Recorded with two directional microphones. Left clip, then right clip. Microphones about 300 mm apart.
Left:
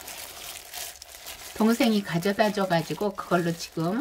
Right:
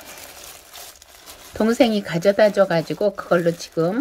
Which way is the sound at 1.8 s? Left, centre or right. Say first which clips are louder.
Right 8 dB; centre.